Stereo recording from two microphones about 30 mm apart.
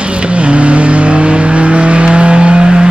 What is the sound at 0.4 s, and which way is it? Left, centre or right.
Vehicle, right.